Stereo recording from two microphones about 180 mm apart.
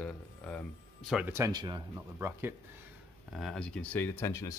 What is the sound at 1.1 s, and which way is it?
Speech, 10° right (ahead or behind).